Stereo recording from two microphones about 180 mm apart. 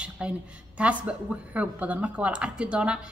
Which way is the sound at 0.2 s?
5° right (ahead or behind).